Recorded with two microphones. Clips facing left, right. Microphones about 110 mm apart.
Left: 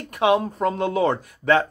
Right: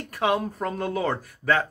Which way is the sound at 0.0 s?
20° left (ahead or behind).